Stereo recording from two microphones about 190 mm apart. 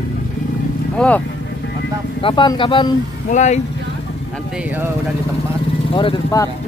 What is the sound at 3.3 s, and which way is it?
Speech, 40° left (ahead or behind).